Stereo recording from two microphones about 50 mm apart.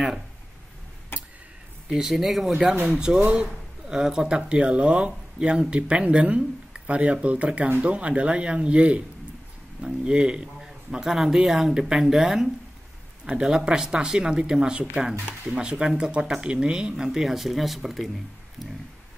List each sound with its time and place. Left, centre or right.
1.1 s tick-tock: left
1.9 s speech: centre
2.9 s speech: centre
3.9 s speech: centre
10.0 s speech: centre